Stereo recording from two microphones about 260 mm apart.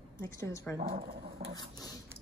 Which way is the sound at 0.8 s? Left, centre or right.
Right.